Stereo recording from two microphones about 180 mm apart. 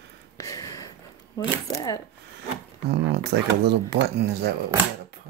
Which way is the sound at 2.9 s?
70° right (ahead or behind).